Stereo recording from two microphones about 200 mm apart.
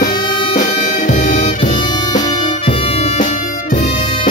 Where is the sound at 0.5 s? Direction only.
40° left (ahead or behind).